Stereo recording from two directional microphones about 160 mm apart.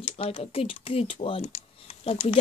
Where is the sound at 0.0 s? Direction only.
40° left (ahead or behind).